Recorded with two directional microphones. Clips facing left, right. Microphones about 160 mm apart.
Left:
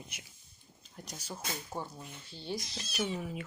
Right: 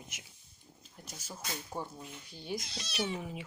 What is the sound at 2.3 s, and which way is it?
Speech, 15° right (ahead or behind).